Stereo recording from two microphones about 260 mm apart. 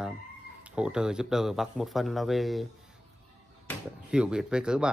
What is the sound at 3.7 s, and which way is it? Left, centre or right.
Speech, centre.